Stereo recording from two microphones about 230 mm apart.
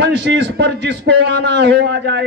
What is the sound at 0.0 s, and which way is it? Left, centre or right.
A man's voice, right.